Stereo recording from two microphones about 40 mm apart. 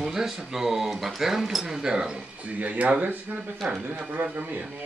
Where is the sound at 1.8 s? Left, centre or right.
Centre.